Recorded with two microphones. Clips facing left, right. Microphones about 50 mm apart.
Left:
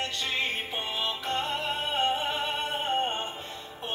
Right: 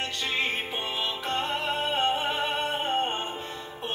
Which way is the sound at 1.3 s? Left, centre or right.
Centre.